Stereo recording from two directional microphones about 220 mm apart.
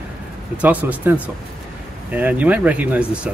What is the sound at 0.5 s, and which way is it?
Speech, 5° right (ahead or behind).